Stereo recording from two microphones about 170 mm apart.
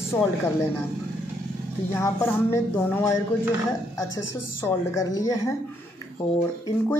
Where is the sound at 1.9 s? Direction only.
15° left (ahead or behind).